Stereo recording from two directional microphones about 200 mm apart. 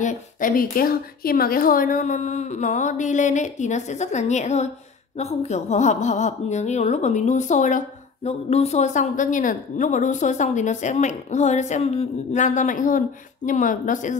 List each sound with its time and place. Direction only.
0.0 s a woman's voice: 40° left (ahead or behind)